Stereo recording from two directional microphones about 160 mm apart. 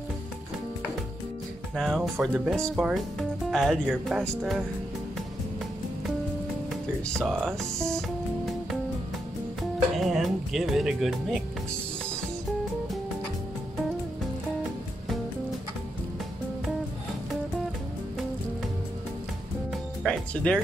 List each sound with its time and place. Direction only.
1.8 s speech: centre (ahead or behind)
7.1 s speech: centre (ahead or behind)
9.6 s speech: centre (ahead or behind)
19.7 s music: 5° left (ahead or behind)